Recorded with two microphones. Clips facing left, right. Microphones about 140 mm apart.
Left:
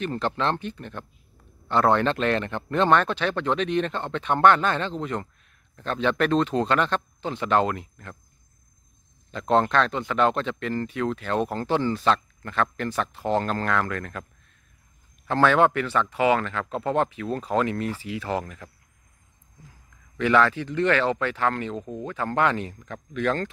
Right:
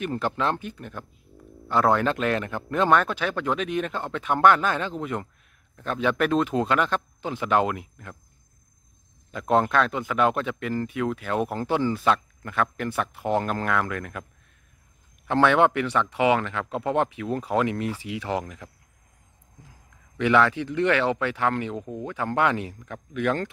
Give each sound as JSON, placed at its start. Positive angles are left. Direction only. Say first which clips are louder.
{"t": 0.0, "sound": "speech", "louder": "even", "side_deg": -10}
{"t": 9.3, "sound": "speech", "louder": "even", "side_deg": -10}
{"t": 15.2, "sound": "speech", "louder": "even", "side_deg": -15}
{"t": 20.2, "sound": "speech", "louder": "even", "side_deg": -15}